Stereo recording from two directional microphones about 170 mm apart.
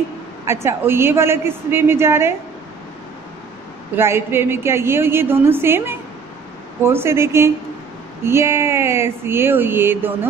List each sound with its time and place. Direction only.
0.5 s a woman's voice: 15° right (ahead or behind)
3.9 s a woman's voice: 15° right (ahead or behind)